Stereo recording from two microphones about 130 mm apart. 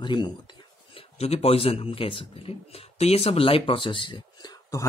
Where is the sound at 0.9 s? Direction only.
50° left (ahead or behind).